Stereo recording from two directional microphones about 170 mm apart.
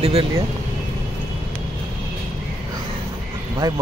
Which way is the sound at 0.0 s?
35° right (ahead or behind).